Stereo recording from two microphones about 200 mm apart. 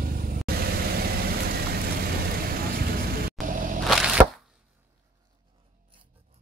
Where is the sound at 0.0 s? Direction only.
45° right (ahead or behind).